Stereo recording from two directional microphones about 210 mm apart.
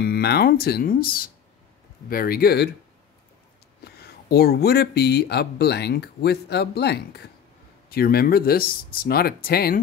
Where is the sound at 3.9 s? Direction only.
50° left (ahead or behind).